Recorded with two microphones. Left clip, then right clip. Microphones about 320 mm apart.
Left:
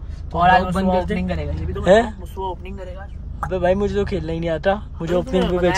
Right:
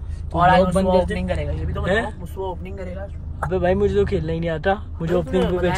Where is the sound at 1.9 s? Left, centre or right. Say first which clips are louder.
Left 8 dB; centre.